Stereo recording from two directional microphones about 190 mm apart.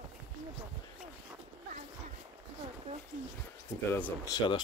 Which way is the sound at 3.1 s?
45° right (ahead or behind).